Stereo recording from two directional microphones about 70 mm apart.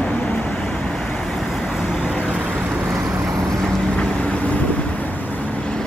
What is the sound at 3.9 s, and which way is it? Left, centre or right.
Vehicle, centre.